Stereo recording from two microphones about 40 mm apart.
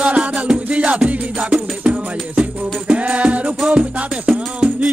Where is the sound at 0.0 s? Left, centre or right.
Right.